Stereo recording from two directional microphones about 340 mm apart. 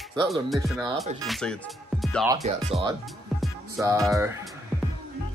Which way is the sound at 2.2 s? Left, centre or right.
Centre.